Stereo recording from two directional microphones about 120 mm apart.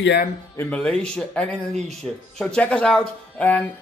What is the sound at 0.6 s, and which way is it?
Speech, 10° left (ahead or behind).